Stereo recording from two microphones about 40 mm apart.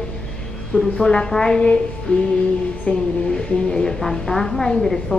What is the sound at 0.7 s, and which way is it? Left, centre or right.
A woman's voice, centre.